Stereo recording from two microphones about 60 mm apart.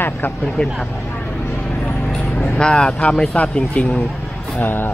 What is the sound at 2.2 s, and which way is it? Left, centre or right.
Vehicle, left.